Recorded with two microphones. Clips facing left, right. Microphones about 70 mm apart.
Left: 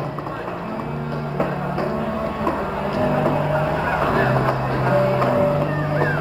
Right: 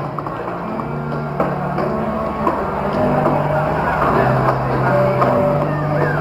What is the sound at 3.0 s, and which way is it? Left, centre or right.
Music, right.